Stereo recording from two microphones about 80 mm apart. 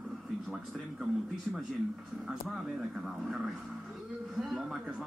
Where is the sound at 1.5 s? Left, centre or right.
Centre.